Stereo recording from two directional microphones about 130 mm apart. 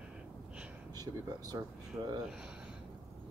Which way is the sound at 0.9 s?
30° right (ahead or behind).